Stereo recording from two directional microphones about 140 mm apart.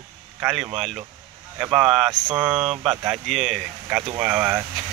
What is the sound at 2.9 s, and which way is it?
Speech, centre (ahead or behind).